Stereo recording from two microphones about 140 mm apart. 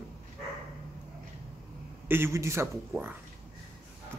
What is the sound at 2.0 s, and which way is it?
Speech, 15° right (ahead or behind).